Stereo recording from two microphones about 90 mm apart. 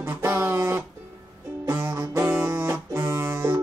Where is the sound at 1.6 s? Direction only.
30° right (ahead or behind).